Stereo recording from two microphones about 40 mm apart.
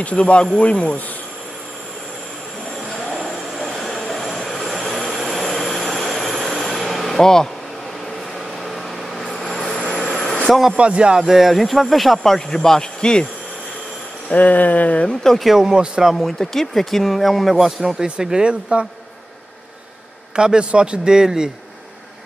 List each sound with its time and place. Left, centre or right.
0.0 s speech: left
3.3 s train: centre
8.6 s a sound: centre
9.8 s vehicle: left
10.0 s vehicle: centre
10.4 s speech: centre
10.8 s a man's voice: right
11.2 s speech: centre
14.3 s a sound: left
15.2 s speech: centre
15.5 s a man's voice: centre
16.2 s speech: centre
18.2 s a man's voice: right
20.3 s a man's voice: right